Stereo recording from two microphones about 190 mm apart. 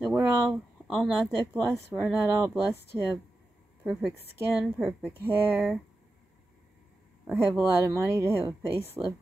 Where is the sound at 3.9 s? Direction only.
Centre (ahead or behind).